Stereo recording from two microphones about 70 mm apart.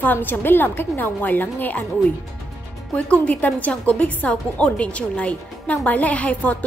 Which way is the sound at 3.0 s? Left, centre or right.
Centre.